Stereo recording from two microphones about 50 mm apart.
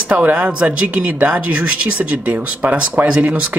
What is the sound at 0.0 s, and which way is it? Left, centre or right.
Speech, right.